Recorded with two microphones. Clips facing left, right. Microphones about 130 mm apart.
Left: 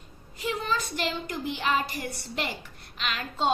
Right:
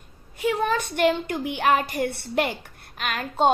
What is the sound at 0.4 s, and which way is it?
A child's voice, 60° right (ahead or behind).